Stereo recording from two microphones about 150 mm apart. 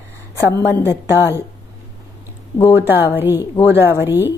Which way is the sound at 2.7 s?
15° right (ahead or behind).